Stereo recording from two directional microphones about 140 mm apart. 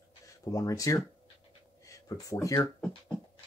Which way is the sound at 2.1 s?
25° left (ahead or behind).